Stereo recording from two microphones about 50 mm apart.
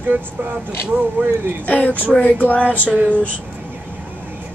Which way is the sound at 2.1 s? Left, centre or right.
Left.